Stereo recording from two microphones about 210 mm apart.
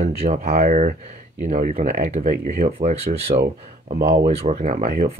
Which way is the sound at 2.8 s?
35° right (ahead or behind).